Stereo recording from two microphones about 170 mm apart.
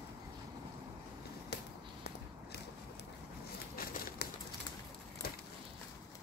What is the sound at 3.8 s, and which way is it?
Crumpling, 60° left (ahead or behind).